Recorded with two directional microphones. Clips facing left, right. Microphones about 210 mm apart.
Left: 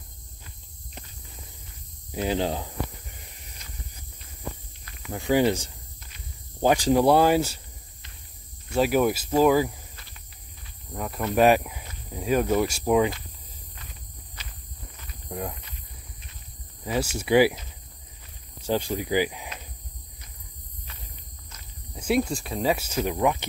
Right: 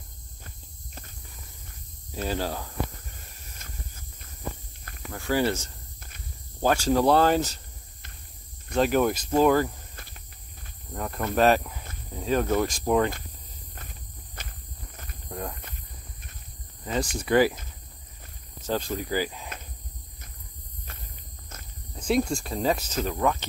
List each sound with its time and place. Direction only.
2.1 s snake: 20° left (ahead or behind)
4.8 s cricket: 50° right (ahead or behind)
5.1 s speech: 15° left (ahead or behind)
5.9 s walk: 50° right (ahead or behind)
6.6 s speech: 15° left (ahead or behind)
8.7 s speech: 10° left (ahead or behind)
10.9 s speech: 5° left (ahead or behind)
14.4 s walk: 50° right (ahead or behind)
15.2 s speech: 10° left (ahead or behind)
16.8 s speech: 5° left (ahead or behind)
18.7 s speech: 15° left (ahead or behind)
21.9 s speech: 5° left (ahead or behind)